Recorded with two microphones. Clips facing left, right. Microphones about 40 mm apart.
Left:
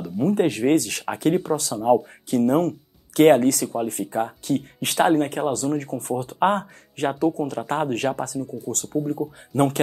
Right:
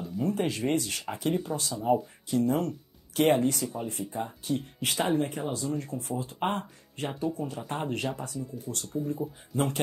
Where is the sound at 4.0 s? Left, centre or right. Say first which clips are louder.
Left 9 dB; left.